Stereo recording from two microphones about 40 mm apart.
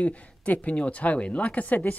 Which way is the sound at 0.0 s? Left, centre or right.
Left.